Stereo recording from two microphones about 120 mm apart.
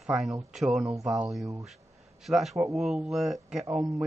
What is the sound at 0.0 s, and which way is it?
Speech, 5° right (ahead or behind).